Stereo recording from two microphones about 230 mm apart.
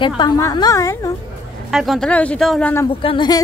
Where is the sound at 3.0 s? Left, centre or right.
Left.